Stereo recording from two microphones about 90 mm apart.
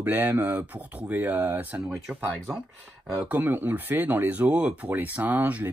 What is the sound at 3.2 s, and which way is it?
Speech, 20° right (ahead or behind).